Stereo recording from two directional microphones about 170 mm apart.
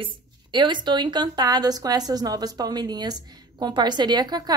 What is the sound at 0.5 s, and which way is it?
A woman's voice, 25° right (ahead or behind).